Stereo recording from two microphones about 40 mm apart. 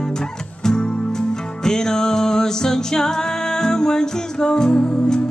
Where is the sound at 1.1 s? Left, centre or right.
Centre.